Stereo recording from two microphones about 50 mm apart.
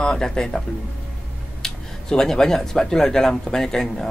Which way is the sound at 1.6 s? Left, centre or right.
Centre.